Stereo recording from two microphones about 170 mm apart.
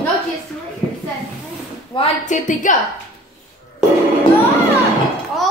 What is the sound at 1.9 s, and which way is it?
Speech, 30° left (ahead or behind).